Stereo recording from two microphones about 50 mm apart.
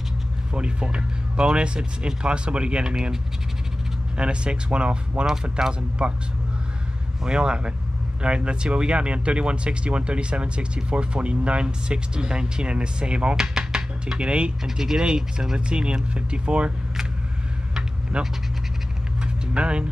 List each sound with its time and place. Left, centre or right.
0.5 s speech: centre
4.2 s speech: right
5.2 s speech: centre
7.2 s speech: centre
14.6 s speech: centre
18.2 s speech: centre
19.5 s speech: right